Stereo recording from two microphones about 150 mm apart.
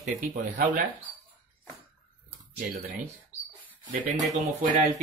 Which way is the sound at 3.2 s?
10° right (ahead or behind).